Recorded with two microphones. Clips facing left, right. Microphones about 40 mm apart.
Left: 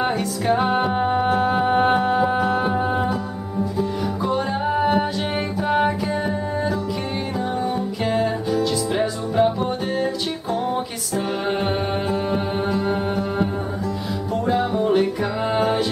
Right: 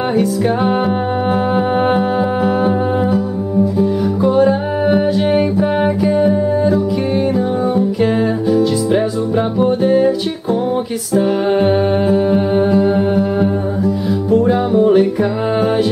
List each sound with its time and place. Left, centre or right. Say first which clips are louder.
0.2 s music: right 5 dB; centre
4.2 s music: right 11 dB; centre
11.1 s music: right 9 dB; centre